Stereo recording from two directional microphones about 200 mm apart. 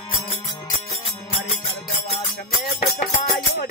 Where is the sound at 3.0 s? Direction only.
40° left (ahead or behind).